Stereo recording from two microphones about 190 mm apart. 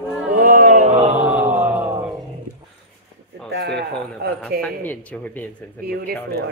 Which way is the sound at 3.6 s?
60° right (ahead or behind).